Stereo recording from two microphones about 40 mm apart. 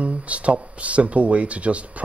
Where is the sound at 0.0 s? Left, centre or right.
Right.